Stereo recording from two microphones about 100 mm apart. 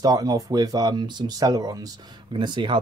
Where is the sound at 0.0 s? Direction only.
40° right (ahead or behind).